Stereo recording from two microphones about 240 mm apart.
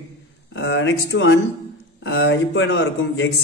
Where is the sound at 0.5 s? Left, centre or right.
Left.